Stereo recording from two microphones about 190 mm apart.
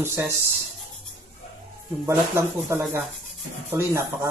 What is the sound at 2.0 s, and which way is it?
Speech, 15° right (ahead or behind).